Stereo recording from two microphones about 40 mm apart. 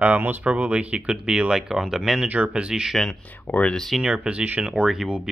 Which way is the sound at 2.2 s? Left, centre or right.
Right.